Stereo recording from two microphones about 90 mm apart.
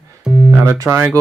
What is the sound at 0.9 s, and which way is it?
Speech, 15° right (ahead or behind).